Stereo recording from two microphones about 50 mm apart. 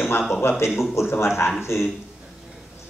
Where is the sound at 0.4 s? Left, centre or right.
Left.